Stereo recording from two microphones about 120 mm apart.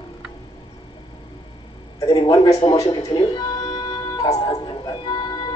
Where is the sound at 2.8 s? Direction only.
35° left (ahead or behind).